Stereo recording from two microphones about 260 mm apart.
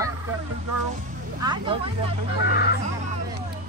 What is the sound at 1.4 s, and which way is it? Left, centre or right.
Speech, centre.